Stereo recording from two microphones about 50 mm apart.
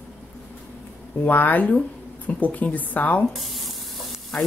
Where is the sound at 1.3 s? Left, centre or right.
Left.